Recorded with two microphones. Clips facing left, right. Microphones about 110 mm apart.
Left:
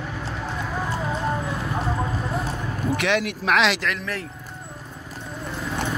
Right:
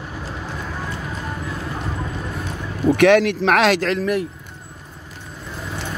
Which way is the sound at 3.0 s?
55° right (ahead or behind).